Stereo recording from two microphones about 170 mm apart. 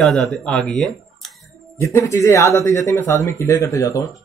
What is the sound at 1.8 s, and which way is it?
Speech, 15° left (ahead or behind).